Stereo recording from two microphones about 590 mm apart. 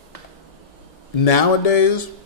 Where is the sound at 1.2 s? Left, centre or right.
Left.